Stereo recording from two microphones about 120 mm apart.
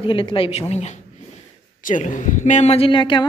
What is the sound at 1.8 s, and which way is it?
A woman's voice, 90° left.